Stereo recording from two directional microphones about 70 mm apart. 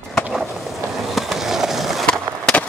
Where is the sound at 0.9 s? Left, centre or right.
Centre.